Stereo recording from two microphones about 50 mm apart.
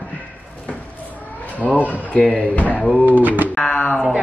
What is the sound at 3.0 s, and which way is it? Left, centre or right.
Speech, right.